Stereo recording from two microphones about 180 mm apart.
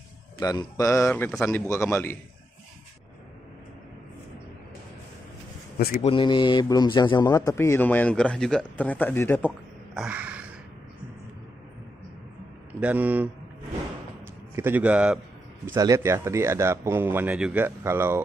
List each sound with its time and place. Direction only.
0.4 s a man's voice: 20° left (ahead or behind)
6.0 s a man's voice: 25° left (ahead or behind); by 9.5 s 10° left (ahead or behind)
9.9 s a sound: 5° right (ahead or behind)
12.8 s a man's voice: 10° right (ahead or behind)
15.6 s speech: 15° right (ahead or behind)